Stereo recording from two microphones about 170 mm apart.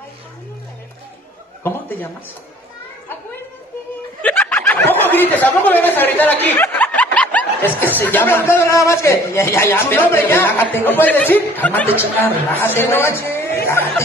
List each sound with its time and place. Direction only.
1.6 s a man's voice: 10° left (ahead or behind)
4.2 s snicker: 10° left (ahead or behind)
8.0 s a man's voice: 10° left (ahead or behind)